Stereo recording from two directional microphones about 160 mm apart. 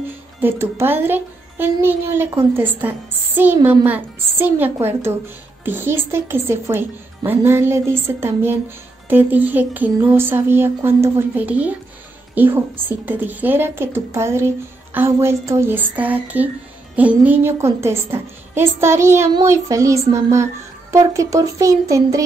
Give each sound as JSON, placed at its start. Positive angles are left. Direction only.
{"t": 0.4, "sound": "a woman's voice", "side_deg": -15}